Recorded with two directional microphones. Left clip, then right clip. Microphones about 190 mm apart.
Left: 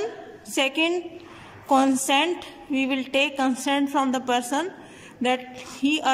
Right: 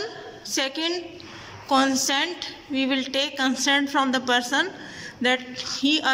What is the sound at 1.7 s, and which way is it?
A man's voice, 20° left (ahead or behind).